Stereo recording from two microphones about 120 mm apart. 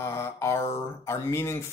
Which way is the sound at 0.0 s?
20° left (ahead or behind).